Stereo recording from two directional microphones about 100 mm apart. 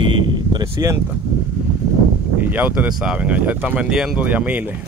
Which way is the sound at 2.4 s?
15° right (ahead or behind).